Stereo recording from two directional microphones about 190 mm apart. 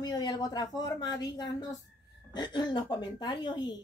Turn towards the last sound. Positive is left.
turn(degrees=25)  # may be behind; listen again after turning